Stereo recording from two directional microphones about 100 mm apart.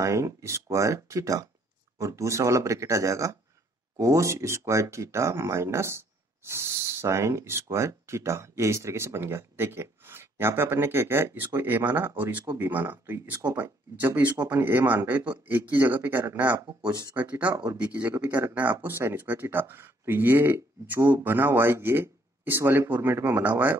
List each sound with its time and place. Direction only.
0.0 s speech: 30° right (ahead or behind)
16.6 s speech: 45° right (ahead or behind)
17.1 s speech: 15° right (ahead or behind)